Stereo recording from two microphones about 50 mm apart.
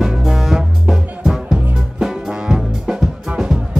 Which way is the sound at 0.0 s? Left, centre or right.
Centre.